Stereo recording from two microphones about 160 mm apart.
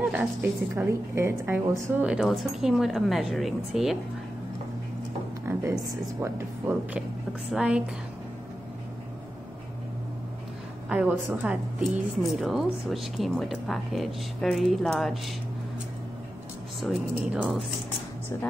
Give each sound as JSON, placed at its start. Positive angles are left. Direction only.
{"t": 0.0, "sound": "a woman's voice", "side_deg": -10}
{"t": 5.4, "sound": "a sound", "side_deg": -15}
{"t": 6.2, "sound": "speech", "side_deg": -15}
{"t": 7.5, "sound": "a woman's voice", "side_deg": -5}
{"t": 10.9, "sound": "a woman's voice", "side_deg": -5}
{"t": 16.8, "sound": "a woman's voice", "side_deg": -5}